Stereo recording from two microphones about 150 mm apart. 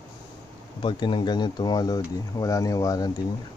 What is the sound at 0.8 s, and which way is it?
Speech, 30° left (ahead or behind).